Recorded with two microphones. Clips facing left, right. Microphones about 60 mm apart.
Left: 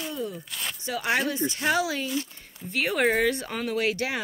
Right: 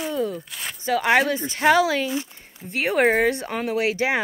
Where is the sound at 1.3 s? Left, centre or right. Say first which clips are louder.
Left 1 dB; right.